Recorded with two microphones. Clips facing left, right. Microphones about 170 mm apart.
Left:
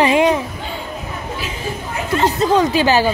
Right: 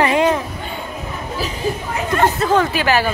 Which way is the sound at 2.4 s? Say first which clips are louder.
Left 2 dB; 15° left (ahead or behind).